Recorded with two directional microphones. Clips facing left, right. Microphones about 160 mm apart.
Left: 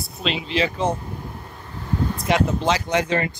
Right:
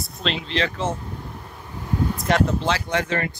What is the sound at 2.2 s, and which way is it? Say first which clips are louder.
Speech: even; 5° left (ahead or behind).